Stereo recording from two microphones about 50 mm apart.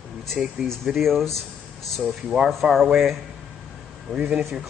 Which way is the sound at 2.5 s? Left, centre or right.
Centre.